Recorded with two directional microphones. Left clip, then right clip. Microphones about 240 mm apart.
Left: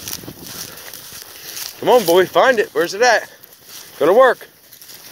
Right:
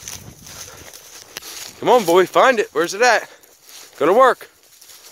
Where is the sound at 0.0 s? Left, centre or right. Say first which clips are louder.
Left 4 dB; left.